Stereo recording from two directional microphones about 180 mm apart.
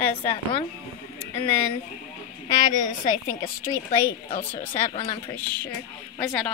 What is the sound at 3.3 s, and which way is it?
Speech, 15° left (ahead or behind).